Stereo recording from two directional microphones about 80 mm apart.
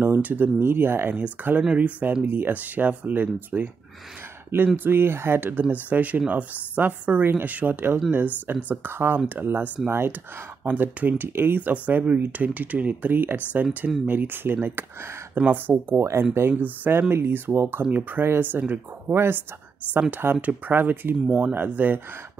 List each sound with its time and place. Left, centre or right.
0.0 s speech: right
4.7 s speech: right
16.0 s speech: right
16.3 s speech: right